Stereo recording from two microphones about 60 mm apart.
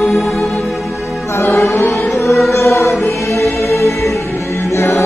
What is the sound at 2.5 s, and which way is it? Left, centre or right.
Choir, left.